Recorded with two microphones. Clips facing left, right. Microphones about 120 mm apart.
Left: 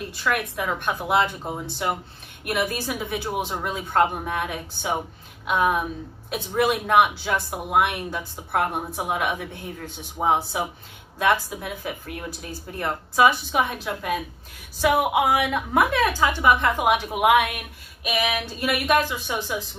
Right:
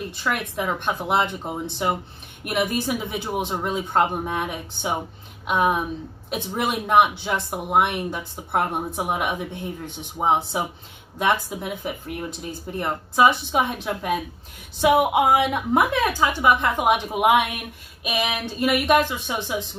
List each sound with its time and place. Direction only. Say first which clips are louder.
0.1 s speech: left 5 dB; 20° right (ahead or behind)
2.4 s speech: right 2 dB; 20° right (ahead or behind)
15.1 s a woman's voice: right 2 dB; 20° right (ahead or behind)